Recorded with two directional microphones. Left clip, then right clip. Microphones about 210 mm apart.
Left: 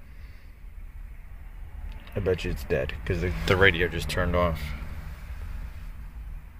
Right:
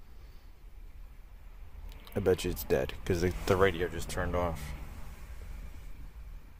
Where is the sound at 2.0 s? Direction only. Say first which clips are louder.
Left 1 dB; 25° right (ahead or behind).